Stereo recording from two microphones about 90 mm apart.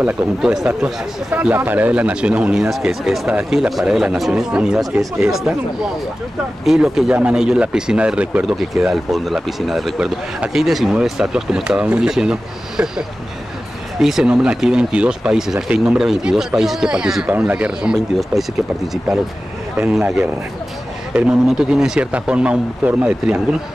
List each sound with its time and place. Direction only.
1.3 s speech: 20° right (ahead or behind)
2.7 s speech: 5° right (ahead or behind)
14.0 s speech: 5° right (ahead or behind)
19.8 s speech: 10° right (ahead or behind)